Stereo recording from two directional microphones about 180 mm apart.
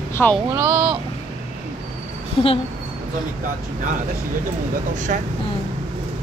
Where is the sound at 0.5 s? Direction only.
15° right (ahead or behind).